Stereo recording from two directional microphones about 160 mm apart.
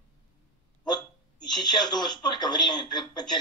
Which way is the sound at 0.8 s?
25° left (ahead or behind).